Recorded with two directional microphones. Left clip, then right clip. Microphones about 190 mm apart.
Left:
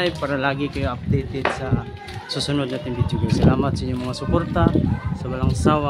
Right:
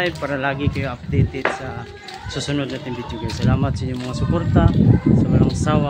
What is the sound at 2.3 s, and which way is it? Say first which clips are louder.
Speech: even; 10° left (ahead or behind).